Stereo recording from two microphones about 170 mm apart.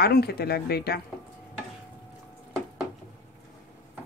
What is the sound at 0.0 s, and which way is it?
A woman's voice, 70° left (ahead or behind).